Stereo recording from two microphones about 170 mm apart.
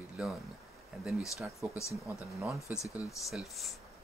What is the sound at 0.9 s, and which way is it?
Speech, 5° right (ahead or behind).